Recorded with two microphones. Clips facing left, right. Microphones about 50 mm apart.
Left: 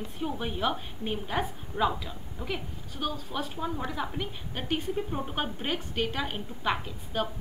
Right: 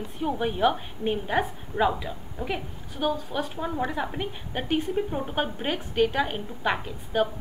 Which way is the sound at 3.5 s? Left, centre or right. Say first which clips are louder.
Right 4 dB; centre.